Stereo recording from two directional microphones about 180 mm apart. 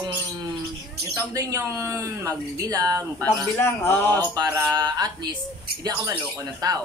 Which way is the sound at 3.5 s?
15° left (ahead or behind).